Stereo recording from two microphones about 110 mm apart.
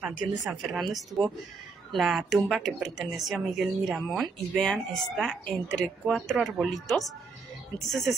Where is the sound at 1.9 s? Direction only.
Centre (ahead or behind).